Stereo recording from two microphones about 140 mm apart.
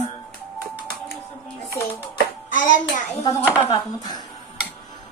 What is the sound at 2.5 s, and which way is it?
Speech, 65° left (ahead or behind).